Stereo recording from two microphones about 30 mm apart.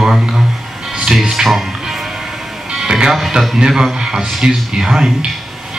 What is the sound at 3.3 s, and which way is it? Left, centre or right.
Speech, right.